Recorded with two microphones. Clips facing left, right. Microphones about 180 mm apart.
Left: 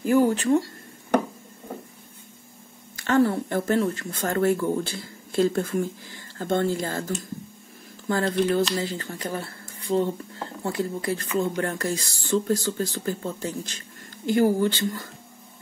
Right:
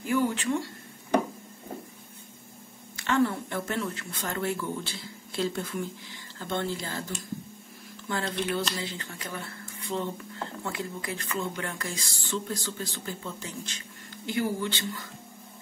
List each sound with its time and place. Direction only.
0.0 s speech: 40° left (ahead or behind)
3.0 s speech: 40° left (ahead or behind)
8.1 s speech: 40° left (ahead or behind)